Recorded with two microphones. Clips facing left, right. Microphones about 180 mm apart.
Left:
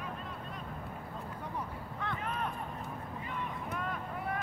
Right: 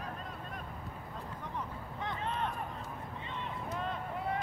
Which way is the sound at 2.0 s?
25° right (ahead or behind).